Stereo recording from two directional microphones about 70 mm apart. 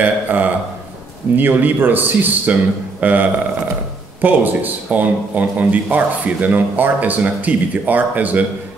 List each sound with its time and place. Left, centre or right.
0.0 s speech: right